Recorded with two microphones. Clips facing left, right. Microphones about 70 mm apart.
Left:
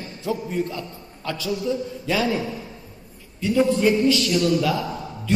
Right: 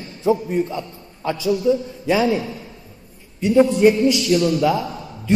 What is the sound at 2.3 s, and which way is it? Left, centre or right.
Speech, centre.